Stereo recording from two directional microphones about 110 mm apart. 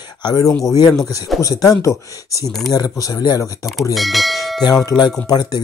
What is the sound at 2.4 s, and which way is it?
Speech, centre (ahead or behind).